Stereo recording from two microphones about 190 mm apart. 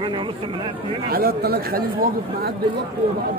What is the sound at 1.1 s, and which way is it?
Speech, 55° right (ahead or behind).